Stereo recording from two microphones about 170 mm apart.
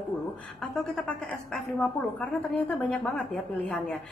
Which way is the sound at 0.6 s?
5° left (ahead or behind).